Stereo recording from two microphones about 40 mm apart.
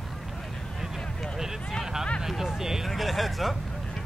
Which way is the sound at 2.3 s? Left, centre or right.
Centre.